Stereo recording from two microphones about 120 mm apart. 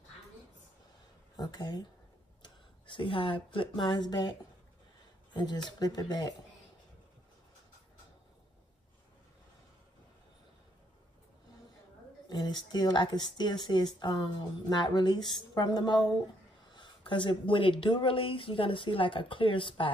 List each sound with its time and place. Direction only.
1.3 s speech: 35° left (ahead or behind)
5.3 s speech: 35° left (ahead or behind)
12.3 s speech: 35° left (ahead or behind)